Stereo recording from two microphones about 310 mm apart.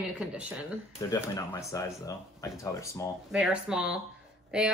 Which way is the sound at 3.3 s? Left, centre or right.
Centre.